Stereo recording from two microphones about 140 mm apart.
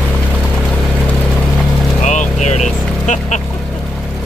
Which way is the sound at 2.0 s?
60° left (ahead or behind).